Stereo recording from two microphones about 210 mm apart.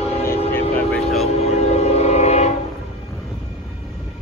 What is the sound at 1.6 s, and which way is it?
Train, 30° left (ahead or behind).